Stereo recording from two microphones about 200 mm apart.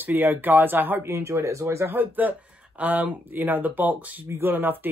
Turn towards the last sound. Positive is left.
turn(degrees=-10)  # may be behind; listen again after turning